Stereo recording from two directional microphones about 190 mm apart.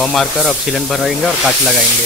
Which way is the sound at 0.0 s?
Centre (ahead or behind).